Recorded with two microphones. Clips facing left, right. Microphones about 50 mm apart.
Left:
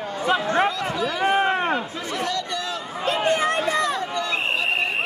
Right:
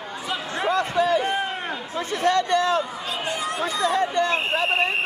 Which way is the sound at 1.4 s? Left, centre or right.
Left.